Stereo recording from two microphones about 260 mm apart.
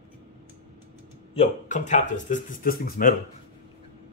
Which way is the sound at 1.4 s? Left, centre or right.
Left.